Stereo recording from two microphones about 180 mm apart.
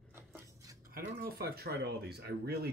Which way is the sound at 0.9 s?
55° right (ahead or behind).